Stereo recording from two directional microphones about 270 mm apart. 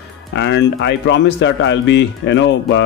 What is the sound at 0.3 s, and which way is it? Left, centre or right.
Speech, left.